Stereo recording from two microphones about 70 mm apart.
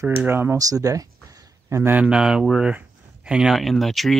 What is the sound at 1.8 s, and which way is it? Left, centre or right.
Speech, right.